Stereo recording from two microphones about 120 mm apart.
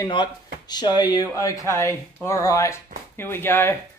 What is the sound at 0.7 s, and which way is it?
A man's voice, 35° left (ahead or behind).